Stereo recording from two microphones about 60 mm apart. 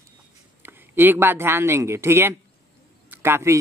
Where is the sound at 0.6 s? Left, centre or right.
Right.